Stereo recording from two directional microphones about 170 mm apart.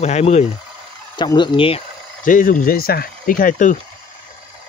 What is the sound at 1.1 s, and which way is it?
Speech, 25° left (ahead or behind).